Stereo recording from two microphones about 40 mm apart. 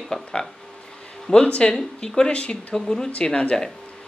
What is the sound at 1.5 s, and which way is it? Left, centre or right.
Speech, left.